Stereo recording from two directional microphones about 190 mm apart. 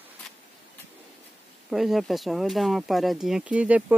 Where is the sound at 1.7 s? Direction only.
Centre (ahead or behind).